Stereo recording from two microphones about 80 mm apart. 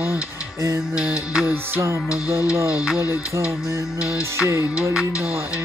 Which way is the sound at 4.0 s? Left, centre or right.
Left.